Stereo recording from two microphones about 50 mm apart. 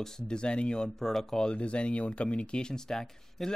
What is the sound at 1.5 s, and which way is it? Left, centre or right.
Speech, left.